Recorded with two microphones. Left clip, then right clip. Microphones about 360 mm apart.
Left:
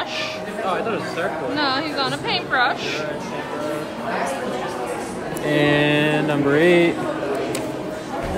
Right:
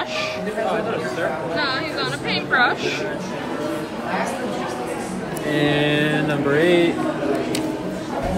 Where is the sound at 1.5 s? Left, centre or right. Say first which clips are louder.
Left 1 dB; centre.